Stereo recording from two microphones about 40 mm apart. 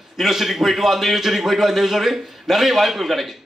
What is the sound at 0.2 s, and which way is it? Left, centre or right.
A man's voice, centre.